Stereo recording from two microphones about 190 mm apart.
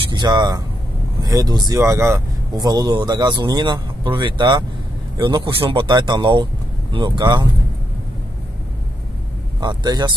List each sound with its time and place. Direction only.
0.1 s speech: 20° right (ahead or behind)
9.6 s speech: 20° right (ahead or behind)